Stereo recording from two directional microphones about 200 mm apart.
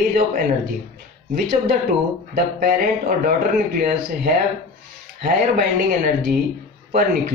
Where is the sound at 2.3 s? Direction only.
45° right (ahead or behind).